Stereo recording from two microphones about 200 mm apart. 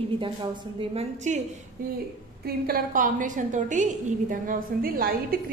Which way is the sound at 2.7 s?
40° right (ahead or behind).